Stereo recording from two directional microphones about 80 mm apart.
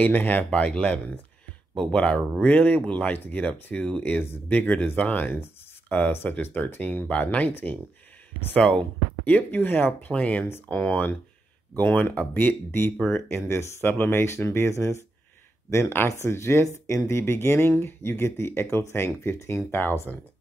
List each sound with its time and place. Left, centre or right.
0.0 s speech: left
2.4 s speech: left
4.0 s speech: left
8.5 s speech: centre
9.2 s speech: left